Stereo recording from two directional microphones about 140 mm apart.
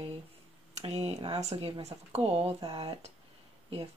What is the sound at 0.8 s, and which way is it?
Speech, 50° right (ahead or behind).